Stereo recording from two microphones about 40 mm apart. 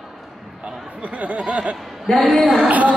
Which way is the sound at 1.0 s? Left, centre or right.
Right.